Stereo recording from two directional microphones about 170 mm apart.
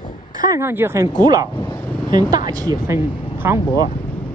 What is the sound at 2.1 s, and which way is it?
Speech, 25° right (ahead or behind).